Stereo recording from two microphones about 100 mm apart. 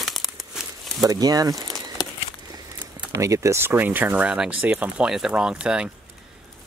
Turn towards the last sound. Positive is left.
turn(degrees=-10)  # may be behind; listen again after turning